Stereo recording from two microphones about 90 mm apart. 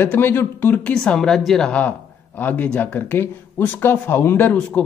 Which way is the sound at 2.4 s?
20° left (ahead or behind).